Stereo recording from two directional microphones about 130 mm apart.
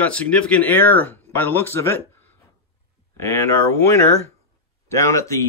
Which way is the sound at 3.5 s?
20° left (ahead or behind).